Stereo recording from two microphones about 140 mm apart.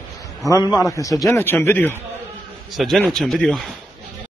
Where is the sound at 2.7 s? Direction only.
Centre (ahead or behind).